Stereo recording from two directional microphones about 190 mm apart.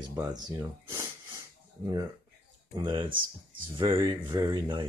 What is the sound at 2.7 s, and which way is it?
Speech, 25° right (ahead or behind).